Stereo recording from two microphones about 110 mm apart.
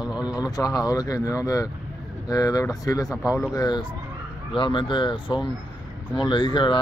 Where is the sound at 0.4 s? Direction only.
35° left (ahead or behind).